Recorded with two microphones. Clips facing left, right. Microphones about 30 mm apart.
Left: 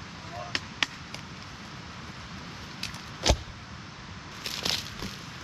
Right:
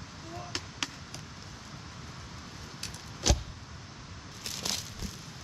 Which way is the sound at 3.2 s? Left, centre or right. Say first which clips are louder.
Left 4 dB; left.